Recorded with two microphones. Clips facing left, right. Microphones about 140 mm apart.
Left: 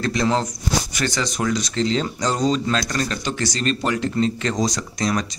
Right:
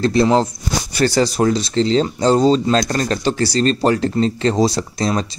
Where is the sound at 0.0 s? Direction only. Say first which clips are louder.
Right 7 dB; 30° right (ahead or behind).